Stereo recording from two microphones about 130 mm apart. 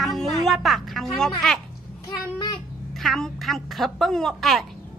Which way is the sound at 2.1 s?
35° left (ahead or behind).